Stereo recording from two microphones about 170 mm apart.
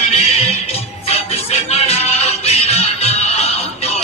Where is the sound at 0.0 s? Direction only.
40° left (ahead or behind).